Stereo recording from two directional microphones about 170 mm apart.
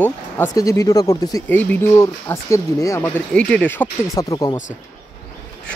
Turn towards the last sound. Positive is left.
turn(degrees=20)  # may be behind; listen again after turning